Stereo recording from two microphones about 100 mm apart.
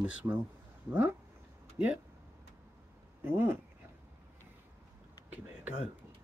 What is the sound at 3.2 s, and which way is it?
Speech, 20° right (ahead or behind).